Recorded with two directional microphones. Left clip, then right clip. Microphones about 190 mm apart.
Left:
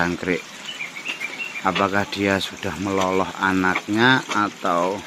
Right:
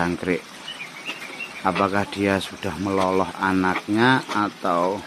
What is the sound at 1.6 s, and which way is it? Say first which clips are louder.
Speech: left 1 dB; centre (ahead or behind).